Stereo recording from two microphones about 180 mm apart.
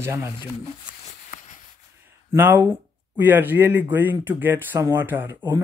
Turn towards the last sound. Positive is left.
turn(degrees=-15)  # may be behind; listen again after turning